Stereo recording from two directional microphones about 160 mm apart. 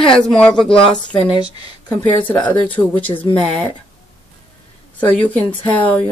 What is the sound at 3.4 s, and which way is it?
Speech, 35° right (ahead or behind).